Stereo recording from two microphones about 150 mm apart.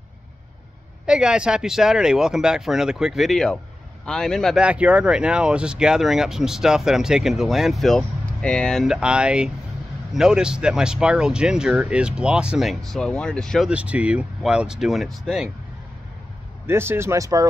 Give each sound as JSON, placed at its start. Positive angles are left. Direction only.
{"t": 1.0, "sound": "speech", "side_deg": -5}
{"t": 4.6, "sound": "speech", "side_deg": -10}
{"t": 13.7, "sound": "speech", "side_deg": -10}
{"t": 16.6, "sound": "speech", "side_deg": -15}